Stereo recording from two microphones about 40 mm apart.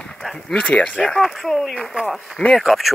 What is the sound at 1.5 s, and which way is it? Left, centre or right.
Speech, centre.